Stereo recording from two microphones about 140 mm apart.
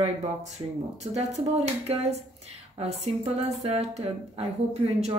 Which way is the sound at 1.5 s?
50° right (ahead or behind).